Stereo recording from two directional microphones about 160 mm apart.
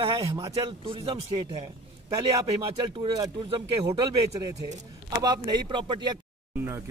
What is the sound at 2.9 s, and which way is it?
Speech, 25° right (ahead or behind).